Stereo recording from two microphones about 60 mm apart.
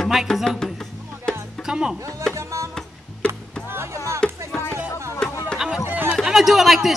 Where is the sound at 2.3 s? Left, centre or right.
Right.